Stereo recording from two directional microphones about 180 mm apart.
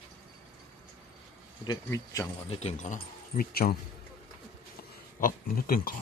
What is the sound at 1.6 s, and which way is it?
Speech, 20° left (ahead or behind).